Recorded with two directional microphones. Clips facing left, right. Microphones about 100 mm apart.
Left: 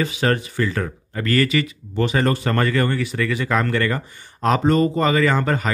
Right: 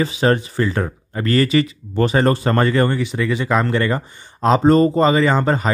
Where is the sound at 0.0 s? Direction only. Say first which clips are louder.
Right 4 dB; 25° right (ahead or behind).